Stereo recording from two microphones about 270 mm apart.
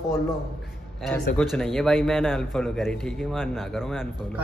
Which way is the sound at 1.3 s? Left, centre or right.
Centre.